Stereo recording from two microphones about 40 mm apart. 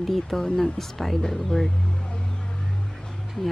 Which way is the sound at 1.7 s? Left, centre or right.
Left.